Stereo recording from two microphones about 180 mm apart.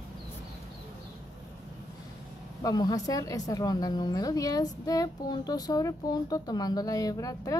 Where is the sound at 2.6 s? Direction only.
20° left (ahead or behind).